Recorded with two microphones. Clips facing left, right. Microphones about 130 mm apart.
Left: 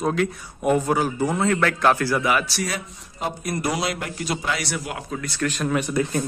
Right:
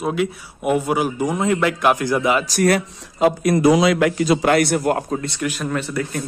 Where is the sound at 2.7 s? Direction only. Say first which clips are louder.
Right 10 dB; 90° right.